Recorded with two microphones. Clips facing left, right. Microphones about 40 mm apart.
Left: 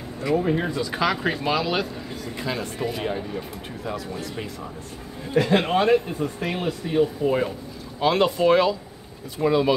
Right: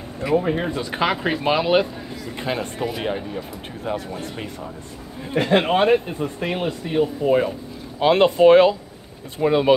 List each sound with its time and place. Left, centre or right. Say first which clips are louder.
0.2 s speech: right 2 dB; centre
3.8 s speech: right 4 dB; right
5.3 s speech: right 2 dB; right
8.0 s speech: right 5 dB; right